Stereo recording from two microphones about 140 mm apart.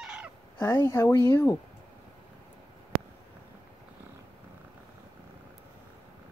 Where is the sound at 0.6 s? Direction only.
20° left (ahead or behind).